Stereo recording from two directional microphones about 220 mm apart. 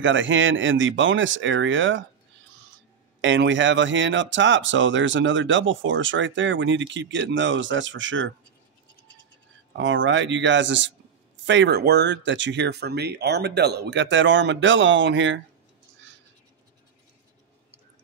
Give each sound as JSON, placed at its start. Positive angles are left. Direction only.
{"t": 0.0, "sound": "speech", "side_deg": -60}
{"t": 3.2, "sound": "speech", "side_deg": -55}
{"t": 9.8, "sound": "speech", "side_deg": -60}